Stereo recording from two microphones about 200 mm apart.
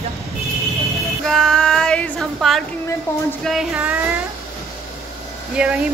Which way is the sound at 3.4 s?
5° right (ahead or behind).